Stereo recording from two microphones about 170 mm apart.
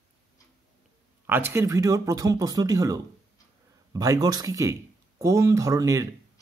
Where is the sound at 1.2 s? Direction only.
15° right (ahead or behind).